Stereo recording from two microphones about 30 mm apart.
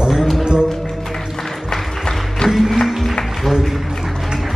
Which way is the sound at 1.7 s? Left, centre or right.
Left.